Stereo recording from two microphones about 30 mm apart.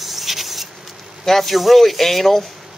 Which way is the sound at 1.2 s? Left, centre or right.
Centre.